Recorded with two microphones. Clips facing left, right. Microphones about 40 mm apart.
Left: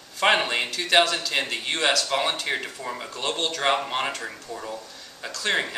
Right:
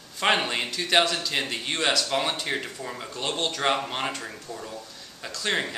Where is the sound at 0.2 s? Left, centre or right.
Centre.